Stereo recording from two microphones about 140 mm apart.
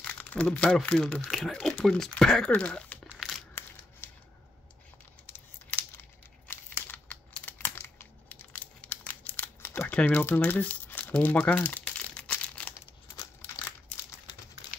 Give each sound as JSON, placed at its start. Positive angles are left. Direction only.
{"t": 0.0, "sound": "speech", "side_deg": 10}
{"t": 3.1, "sound": "crushing", "side_deg": 0}
{"t": 5.2, "sound": "computer keyboard", "side_deg": 15}
{"t": 6.5, "sound": "crumpling", "side_deg": 10}